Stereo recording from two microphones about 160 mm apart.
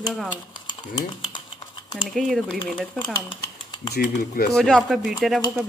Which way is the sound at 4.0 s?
55° left (ahead or behind).